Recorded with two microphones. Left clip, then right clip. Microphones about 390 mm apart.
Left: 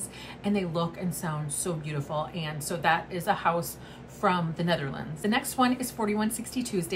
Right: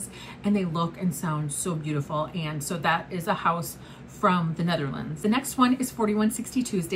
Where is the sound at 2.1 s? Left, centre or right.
Left.